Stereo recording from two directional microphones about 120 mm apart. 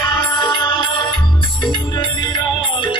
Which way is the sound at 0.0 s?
45° left (ahead or behind).